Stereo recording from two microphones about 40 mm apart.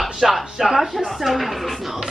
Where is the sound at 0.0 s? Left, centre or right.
Centre.